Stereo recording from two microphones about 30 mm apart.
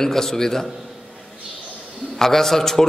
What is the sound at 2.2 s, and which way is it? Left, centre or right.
Speech, centre.